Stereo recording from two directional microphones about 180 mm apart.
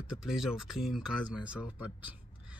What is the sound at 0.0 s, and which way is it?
Speech, 5° right (ahead or behind).